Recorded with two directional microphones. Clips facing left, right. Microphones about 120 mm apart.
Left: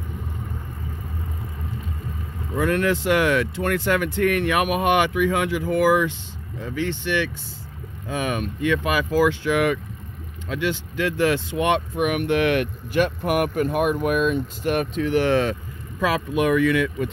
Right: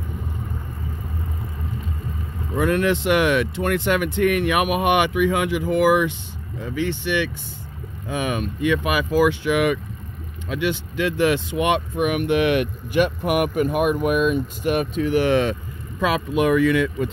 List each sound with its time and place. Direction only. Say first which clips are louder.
2.5 s speech: right 1 dB; 20° right (ahead or behind)
11.9 s speech: right 1 dB; centre (ahead or behind)
12.4 s speech: right 1 dB; 15° right (ahead or behind)